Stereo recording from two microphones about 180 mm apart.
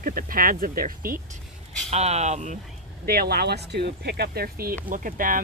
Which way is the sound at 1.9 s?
35° right (ahead or behind).